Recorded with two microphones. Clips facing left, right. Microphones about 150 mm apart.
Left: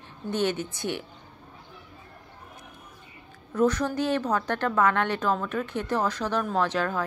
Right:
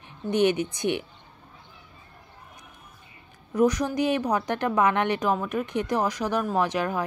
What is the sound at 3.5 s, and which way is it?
A woman's voice, 15° right (ahead or behind).